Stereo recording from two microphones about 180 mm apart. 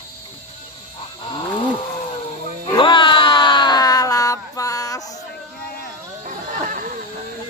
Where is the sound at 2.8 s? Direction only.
30° left (ahead or behind).